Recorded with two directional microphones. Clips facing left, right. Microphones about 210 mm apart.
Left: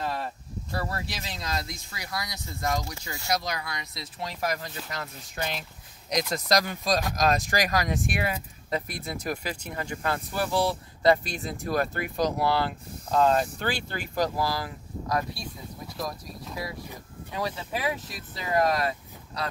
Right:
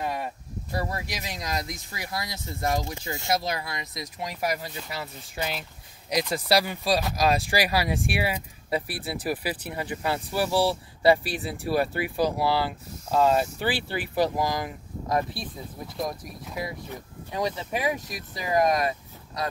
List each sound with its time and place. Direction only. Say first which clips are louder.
0.0 s speech: right 1 dB; 15° right (ahead or behind)